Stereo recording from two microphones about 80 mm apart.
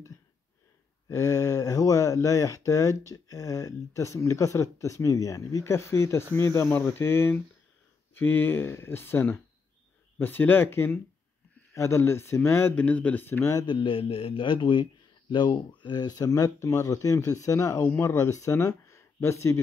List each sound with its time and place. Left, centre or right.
1.0 s speech: left
12.8 s speech: centre
13.7 s a man's voice: left
16.5 s speech: left